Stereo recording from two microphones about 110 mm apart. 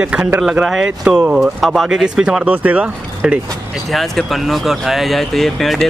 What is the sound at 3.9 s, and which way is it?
Speech, centre (ahead or behind).